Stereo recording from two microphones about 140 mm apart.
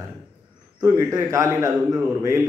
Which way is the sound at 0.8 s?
25° right (ahead or behind).